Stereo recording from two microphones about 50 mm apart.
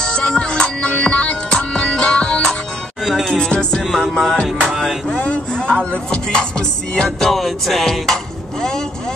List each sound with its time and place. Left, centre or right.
0.0 s music: centre
3.0 s music: centre
3.3 s music: centre
3.8 s music: centre
5.0 s a sound: centre
5.9 s music: centre
7.2 s dishes: centre